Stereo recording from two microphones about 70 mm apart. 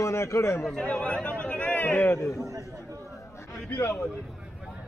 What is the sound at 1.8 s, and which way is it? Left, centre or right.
Speech, left.